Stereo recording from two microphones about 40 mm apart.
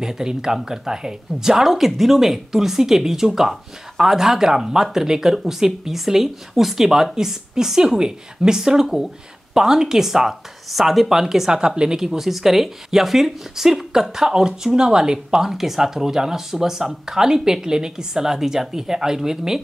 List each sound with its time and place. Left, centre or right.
0.0 s speech: centre
11.6 s speech: right
12.0 s speech: centre